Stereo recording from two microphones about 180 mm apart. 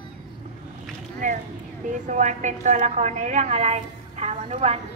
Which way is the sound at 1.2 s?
45° right (ahead or behind).